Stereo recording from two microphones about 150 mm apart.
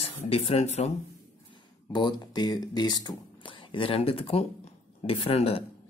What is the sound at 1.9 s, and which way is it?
Speech, 30° left (ahead or behind).